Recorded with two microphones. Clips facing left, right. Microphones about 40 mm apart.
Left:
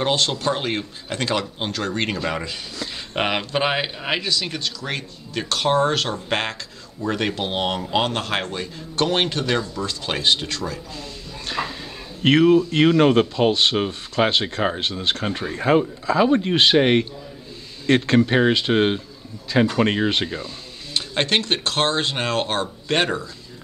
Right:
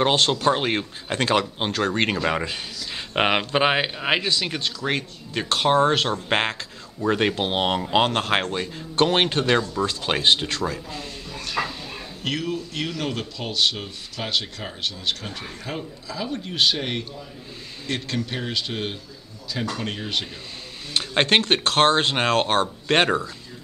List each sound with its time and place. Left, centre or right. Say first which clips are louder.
0.0 s speech: right 2 dB; right
11.6 s a sound: right 1 dB; centre
12.2 s a man's voice: left 13 dB; left
13.5 s a man's voice: left 5 dB; left
14.4 s speech: left 12 dB; left
14.8 s a man's voice: left 4 dB; left
15.8 s a man's voice: left 12 dB; left
18.7 s a man's voice: left 11 dB; left
19.5 s a man's voice: left 9 dB; left
19.8 s speech: left 11 dB; left
21.1 s speech: right 2 dB; right